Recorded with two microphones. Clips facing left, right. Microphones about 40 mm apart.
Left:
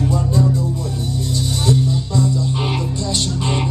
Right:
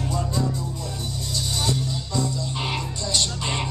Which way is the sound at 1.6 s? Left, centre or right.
Centre.